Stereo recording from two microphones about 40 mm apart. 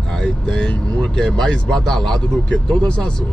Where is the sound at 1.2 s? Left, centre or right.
Centre.